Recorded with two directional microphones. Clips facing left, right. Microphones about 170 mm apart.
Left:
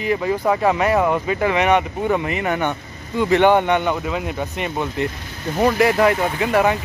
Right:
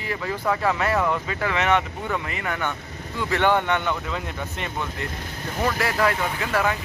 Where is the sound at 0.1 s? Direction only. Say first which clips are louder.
Left 6 dB; 20° left (ahead or behind).